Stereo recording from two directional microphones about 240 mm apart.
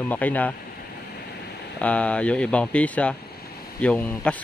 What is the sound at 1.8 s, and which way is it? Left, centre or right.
Speech, centre.